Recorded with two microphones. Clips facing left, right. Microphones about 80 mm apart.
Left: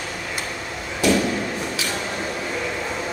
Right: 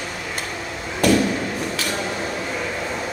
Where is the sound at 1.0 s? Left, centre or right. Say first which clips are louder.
Right 2 dB; right.